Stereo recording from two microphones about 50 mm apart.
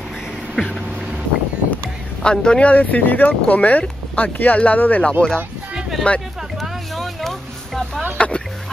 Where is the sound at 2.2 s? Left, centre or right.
Centre.